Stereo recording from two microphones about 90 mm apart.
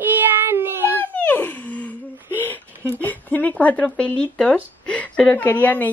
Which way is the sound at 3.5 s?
15° left (ahead or behind).